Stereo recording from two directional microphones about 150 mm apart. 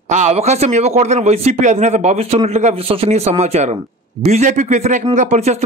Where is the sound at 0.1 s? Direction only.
50° right (ahead or behind).